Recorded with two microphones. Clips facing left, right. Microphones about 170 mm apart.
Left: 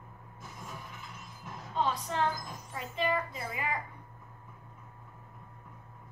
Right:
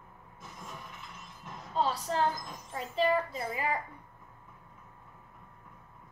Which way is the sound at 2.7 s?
35° right (ahead or behind).